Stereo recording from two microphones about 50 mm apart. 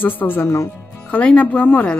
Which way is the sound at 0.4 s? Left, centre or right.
Left.